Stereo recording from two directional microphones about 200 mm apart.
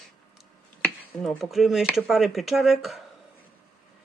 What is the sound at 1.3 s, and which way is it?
Speech, centre (ahead or behind).